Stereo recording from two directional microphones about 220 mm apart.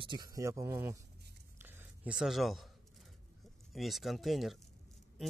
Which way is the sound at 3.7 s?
Centre (ahead or behind).